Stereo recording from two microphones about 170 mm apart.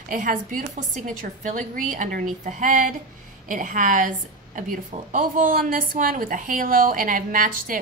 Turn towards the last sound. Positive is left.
turn(degrees=-55)  # may be behind; listen again after turning